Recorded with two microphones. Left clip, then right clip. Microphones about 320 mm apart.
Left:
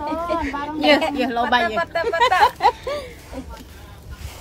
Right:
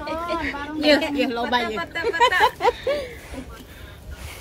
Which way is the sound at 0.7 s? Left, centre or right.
Left.